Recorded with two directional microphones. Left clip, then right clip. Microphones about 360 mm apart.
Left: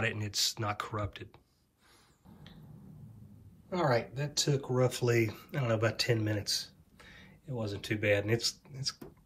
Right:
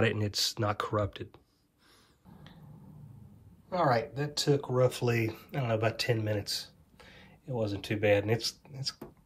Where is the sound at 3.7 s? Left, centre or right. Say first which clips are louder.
Right 3 dB; centre.